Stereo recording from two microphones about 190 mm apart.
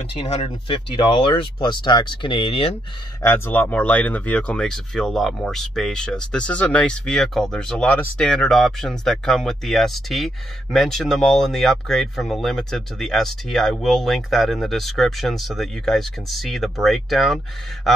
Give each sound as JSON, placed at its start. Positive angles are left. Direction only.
{"t": 0.1, "sound": "speech", "side_deg": 30}
{"t": 3.2, "sound": "speech", "side_deg": 10}